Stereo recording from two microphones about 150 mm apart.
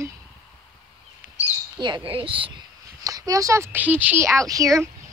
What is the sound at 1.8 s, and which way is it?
Speech, 30° right (ahead or behind).